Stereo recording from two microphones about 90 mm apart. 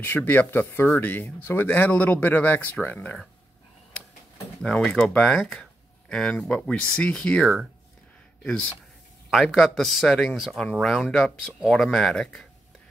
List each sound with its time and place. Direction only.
0.0 s speech: 20° left (ahead or behind)
4.6 s speech: 10° left (ahead or behind)
9.3 s speech: centre (ahead or behind)